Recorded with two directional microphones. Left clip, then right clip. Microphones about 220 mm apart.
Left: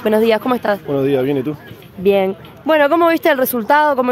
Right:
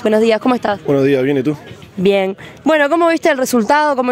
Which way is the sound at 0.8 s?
35° right (ahead or behind).